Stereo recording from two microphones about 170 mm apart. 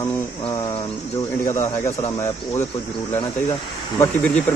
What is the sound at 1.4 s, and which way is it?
Speech, 45° left (ahead or behind).